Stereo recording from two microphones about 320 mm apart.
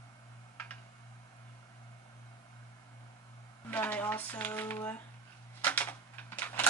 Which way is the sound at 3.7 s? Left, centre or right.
Centre.